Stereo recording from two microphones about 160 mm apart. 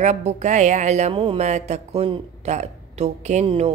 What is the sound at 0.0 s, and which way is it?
Speech, 45° right (ahead or behind).